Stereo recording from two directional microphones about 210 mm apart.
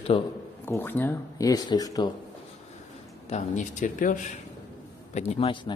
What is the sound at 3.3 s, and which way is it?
Speech, 30° left (ahead or behind).